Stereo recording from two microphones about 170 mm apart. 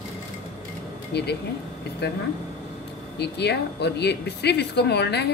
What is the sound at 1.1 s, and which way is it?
Speech, 75° left (ahead or behind).